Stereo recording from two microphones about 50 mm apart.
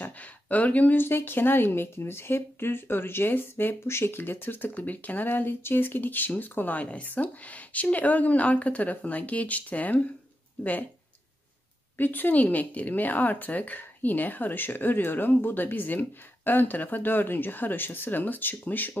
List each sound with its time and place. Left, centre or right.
0.0 s a sound: left
0.9 s speech: left
12.0 s speech: left